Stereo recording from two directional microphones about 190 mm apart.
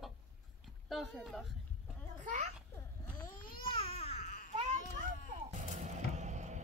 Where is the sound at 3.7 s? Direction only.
30° left (ahead or behind).